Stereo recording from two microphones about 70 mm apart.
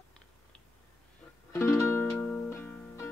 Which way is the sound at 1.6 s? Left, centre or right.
Left.